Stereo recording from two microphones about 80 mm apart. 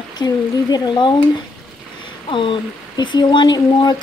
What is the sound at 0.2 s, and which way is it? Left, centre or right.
Speech, left.